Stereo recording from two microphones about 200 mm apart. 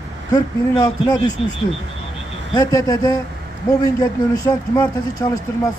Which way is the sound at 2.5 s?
20° left (ahead or behind).